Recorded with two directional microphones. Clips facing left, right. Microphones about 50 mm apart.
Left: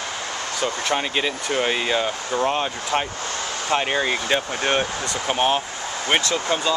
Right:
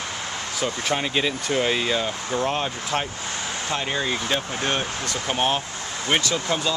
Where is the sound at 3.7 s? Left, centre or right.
Left.